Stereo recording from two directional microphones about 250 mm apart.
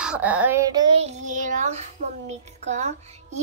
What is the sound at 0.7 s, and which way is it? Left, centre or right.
Child singing, right.